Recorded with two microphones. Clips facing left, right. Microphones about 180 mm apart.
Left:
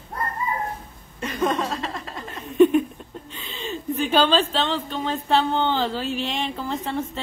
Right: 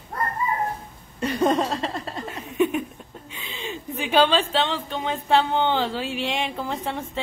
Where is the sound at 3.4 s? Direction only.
10° right (ahead or behind).